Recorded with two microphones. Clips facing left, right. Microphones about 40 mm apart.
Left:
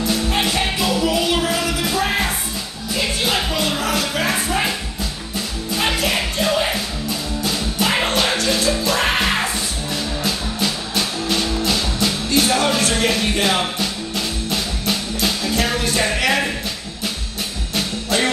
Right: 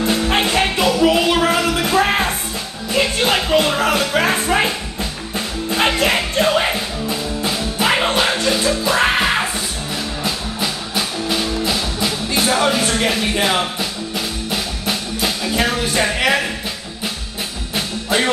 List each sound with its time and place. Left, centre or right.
0.4 s music: right
5.9 s music: right
7.1 s music: right
17.7 s music: centre